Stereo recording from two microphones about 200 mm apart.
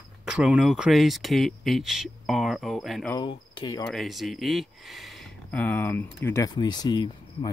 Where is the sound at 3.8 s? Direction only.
Centre (ahead or behind).